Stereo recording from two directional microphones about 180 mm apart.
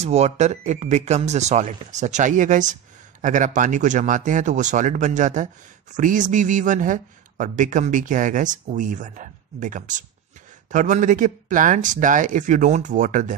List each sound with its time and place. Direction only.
0.0 s speech: 40° right (ahead or behind)